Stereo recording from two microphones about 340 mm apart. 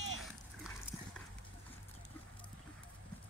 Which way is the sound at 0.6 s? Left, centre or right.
Centre.